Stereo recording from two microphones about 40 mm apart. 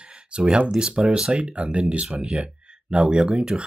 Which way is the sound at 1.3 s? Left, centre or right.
Right.